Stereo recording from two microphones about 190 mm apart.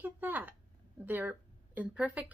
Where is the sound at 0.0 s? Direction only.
10° right (ahead or behind).